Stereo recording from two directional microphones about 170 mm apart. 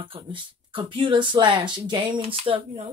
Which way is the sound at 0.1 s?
30° right (ahead or behind).